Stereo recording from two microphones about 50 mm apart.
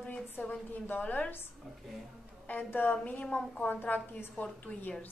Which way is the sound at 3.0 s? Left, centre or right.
Left.